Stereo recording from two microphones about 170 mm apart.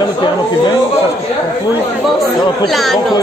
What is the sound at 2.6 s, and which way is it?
Speech, centre (ahead or behind).